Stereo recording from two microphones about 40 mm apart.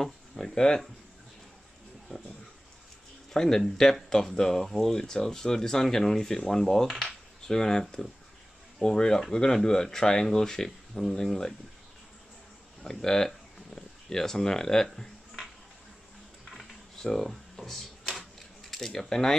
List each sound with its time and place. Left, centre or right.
0.0 s speech: centre
3.3 s speech: centre
12.8 s speech: centre
16.4 s a sound: centre
18.7 s speech: centre